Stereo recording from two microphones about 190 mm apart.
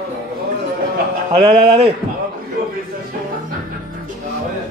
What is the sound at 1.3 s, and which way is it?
Speech, 30° right (ahead or behind).